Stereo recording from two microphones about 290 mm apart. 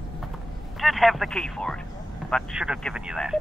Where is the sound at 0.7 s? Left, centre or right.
Centre.